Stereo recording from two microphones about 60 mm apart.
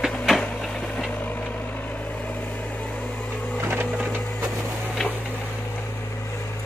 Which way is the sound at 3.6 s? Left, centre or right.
Right.